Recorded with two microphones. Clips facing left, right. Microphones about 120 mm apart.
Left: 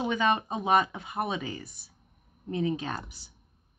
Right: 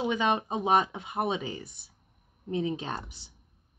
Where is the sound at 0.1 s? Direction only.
15° right (ahead or behind).